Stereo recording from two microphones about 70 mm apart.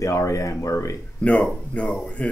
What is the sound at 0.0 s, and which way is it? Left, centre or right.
Speech, left.